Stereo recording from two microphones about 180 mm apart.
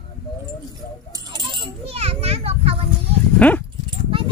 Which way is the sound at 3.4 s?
10° left (ahead or behind).